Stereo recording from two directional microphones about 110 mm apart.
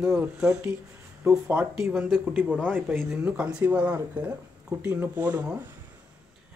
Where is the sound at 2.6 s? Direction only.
20° right (ahead or behind).